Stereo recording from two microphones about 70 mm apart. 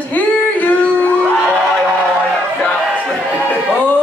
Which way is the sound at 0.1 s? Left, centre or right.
Left.